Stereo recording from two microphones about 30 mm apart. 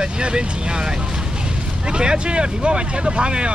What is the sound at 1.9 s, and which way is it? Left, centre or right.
Speech, right.